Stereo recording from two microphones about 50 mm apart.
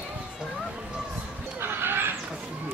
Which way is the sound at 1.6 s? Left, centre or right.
Right.